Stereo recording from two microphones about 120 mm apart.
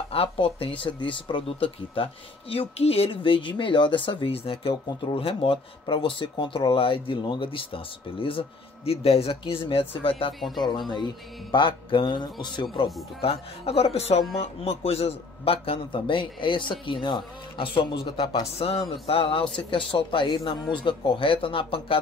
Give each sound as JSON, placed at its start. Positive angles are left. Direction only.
{"t": 0.1, "sound": "speech", "side_deg": 55}
{"t": 11.5, "sound": "speech", "side_deg": 40}
{"t": 13.2, "sound": "speech", "side_deg": 55}